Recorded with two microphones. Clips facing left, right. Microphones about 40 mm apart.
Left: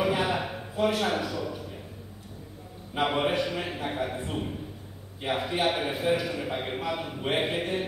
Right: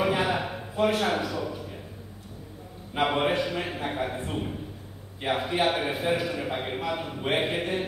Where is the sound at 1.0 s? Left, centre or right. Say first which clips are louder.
Right 1 dB; centre.